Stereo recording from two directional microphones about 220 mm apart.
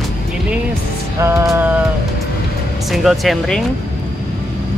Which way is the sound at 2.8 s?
Centre (ahead or behind).